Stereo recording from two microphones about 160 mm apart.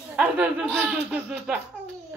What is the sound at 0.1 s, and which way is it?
Speech, 10° right (ahead or behind).